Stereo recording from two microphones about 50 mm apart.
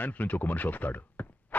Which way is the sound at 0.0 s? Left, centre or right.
Left.